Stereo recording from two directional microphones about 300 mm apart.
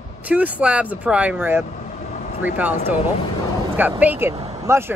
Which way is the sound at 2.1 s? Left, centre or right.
Left.